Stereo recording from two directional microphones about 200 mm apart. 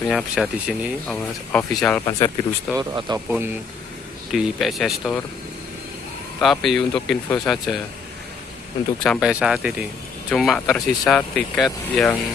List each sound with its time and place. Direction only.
0.1 s speech: 5° right (ahead or behind)
2.0 s speech: 20° left (ahead or behind)
2.8 s speech: 20° right (ahead or behind)
4.3 s speech: centre (ahead or behind)
6.4 s speech: centre (ahead or behind)
9.0 s speech: centre (ahead or behind)